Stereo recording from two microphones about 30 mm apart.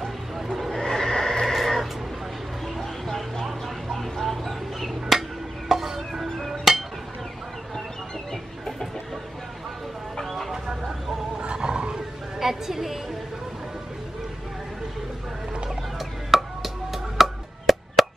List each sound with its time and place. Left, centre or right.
0.5 s neigh: centre
0.7 s neigh: centre
1.4 s a sound: centre
2.6 s music: centre
5.7 s music: centre
6.7 s a sound: centre
8.3 s chicken: centre
10.2 s a sound: centre
10.9 s vehicle: centre
11.3 s music: right
12.4 s a sound: centre
16.0 s music: centre